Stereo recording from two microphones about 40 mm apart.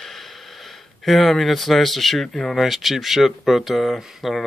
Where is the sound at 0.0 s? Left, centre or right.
Centre.